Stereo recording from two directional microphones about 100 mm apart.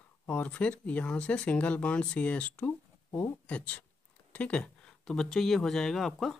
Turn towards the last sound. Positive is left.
turn(degrees=0)  # may be behind; listen again after turning